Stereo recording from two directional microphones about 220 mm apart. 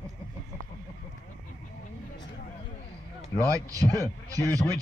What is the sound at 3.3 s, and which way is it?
A man's voice, 15° right (ahead or behind).